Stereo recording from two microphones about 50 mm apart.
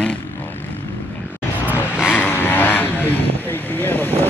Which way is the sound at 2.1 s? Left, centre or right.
Left.